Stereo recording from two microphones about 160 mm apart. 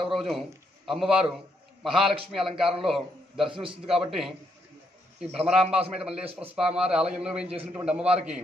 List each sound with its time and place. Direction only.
0.0 s a man's voice: centre (ahead or behind)
5.5 s a man's voice: 5° right (ahead or behind)